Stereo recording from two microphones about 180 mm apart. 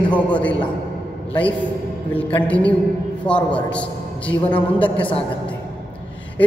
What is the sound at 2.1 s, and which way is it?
A man's voice, 10° left (ahead or behind).